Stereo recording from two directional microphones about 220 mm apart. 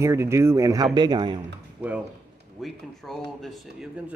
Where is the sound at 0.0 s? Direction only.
15° right (ahead or behind).